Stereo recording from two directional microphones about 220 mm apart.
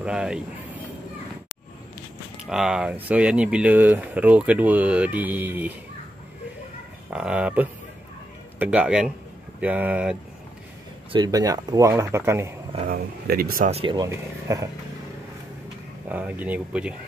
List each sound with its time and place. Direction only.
0.0 s speech: 5° right (ahead or behind)
2.4 s speech: centre (ahead or behind)
7.1 s speech: 5° right (ahead or behind)
11.1 s speech: 20° right (ahead or behind)
12.8 s speech: 45° right (ahead or behind)
13.7 s speech: 25° right (ahead or behind)
16.1 s speech: 5° right (ahead or behind)